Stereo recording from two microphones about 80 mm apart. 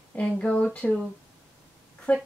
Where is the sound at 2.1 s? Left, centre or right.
Centre.